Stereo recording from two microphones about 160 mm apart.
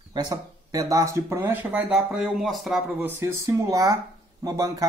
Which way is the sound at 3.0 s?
15° right (ahead or behind).